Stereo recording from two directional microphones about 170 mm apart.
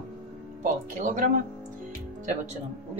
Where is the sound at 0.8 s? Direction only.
50° right (ahead or behind).